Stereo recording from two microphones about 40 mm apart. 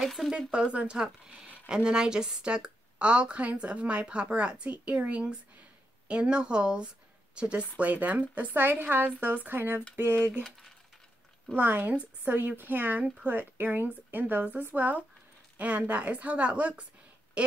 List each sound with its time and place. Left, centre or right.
0.0 s speech: centre
0.5 s speech: right
7.8 s speech: right
8.5 s a woman's voice: right
11.5 s speech: right